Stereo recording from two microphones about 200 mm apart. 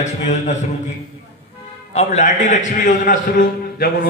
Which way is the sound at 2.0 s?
35° left (ahead or behind).